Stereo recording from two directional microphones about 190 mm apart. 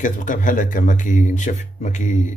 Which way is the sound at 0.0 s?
40° left (ahead or behind).